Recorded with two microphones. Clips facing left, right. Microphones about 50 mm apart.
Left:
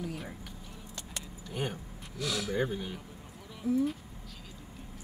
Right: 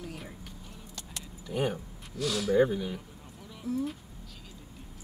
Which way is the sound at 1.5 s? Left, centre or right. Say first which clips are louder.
Right 6 dB; centre.